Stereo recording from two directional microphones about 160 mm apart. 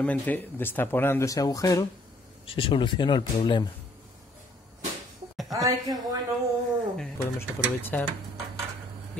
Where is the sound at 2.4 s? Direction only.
35° left (ahead or behind).